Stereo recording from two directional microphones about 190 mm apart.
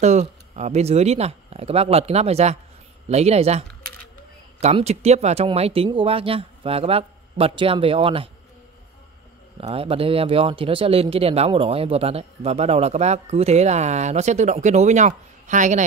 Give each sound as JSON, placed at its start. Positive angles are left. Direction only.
{"t": 0.0, "sound": "speech", "side_deg": -35}
{"t": 9.6, "sound": "speech", "side_deg": -30}